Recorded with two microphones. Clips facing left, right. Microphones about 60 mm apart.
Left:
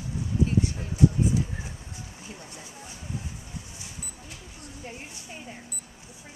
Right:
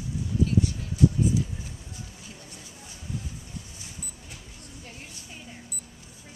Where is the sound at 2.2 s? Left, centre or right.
Left.